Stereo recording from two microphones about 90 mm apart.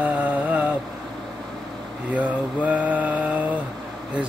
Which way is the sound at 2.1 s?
15° right (ahead or behind).